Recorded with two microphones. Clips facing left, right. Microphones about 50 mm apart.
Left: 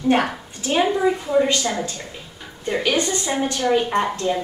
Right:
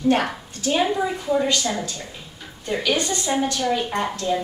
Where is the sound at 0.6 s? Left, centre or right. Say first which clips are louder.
Left 1 dB; left.